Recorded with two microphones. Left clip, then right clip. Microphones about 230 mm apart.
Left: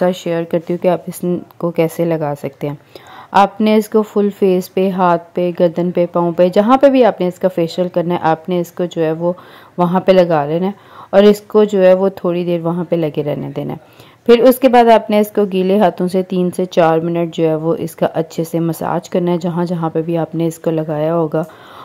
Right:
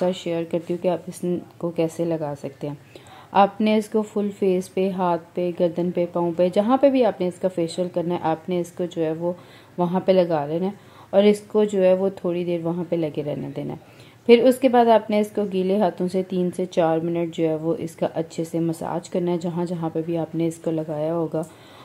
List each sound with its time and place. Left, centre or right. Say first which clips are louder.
0.0 s speech: left 8 dB; left